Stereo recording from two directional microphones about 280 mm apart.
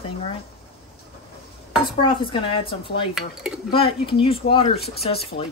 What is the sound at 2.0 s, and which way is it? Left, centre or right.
A woman's voice, centre.